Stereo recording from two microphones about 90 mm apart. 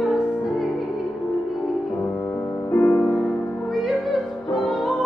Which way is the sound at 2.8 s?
15° left (ahead or behind).